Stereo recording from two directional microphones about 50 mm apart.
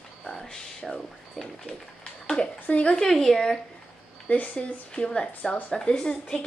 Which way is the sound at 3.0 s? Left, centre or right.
Centre.